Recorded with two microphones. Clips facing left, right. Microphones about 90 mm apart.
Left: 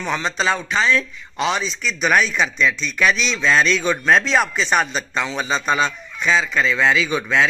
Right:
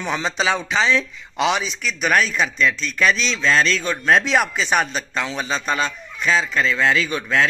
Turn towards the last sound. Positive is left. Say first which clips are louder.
# left 1 dB
turn(degrees=5)  # may be behind; listen again after turning